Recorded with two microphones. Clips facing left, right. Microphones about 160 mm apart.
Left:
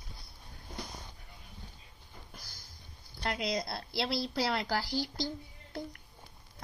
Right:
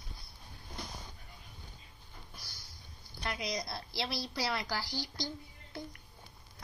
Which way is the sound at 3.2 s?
55° left (ahead or behind).